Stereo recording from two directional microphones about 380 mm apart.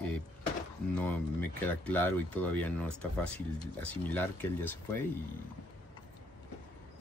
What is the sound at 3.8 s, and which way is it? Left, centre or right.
Speech, centre.